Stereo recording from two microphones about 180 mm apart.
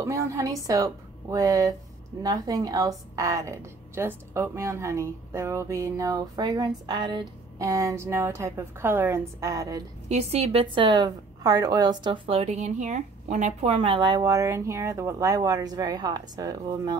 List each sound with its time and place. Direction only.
0.0 s a woman's voice: 15° right (ahead or behind)
10.0 s a woman's voice: 35° right (ahead or behind)